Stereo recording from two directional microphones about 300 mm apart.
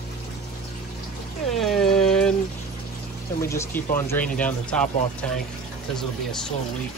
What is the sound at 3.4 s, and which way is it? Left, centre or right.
Speech, centre.